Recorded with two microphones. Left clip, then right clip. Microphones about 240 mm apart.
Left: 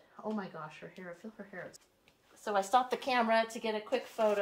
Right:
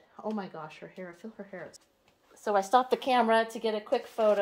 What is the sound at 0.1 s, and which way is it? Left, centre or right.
Speech, right.